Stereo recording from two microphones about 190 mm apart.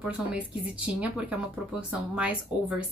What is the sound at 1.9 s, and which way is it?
Speech, 5° right (ahead or behind).